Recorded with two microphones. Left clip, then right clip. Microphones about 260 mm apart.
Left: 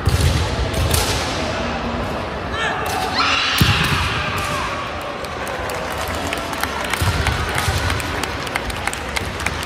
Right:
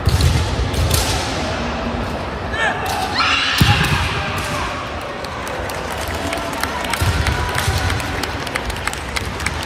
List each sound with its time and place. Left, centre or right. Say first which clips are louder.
3.2 s neigh: right 1 dB; right